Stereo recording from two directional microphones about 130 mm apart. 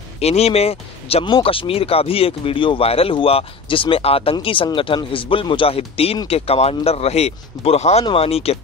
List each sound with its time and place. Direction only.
0.2 s speech: 55° left (ahead or behind)